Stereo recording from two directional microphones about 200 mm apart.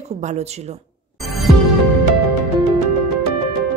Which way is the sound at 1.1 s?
Centre (ahead or behind).